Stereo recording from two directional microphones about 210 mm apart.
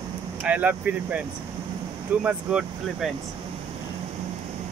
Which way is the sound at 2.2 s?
5° right (ahead or behind).